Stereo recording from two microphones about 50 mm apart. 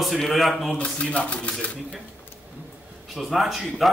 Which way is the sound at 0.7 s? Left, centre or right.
Left.